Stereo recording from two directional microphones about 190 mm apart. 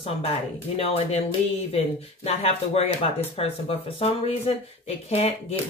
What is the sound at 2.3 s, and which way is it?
Speech, 30° left (ahead or behind).